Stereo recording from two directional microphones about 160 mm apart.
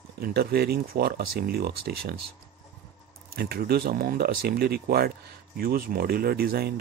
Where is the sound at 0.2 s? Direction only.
70° right (ahead or behind).